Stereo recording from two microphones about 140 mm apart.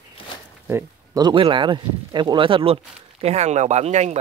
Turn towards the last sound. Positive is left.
turn(degrees=-50)  # may be behind; listen again after turning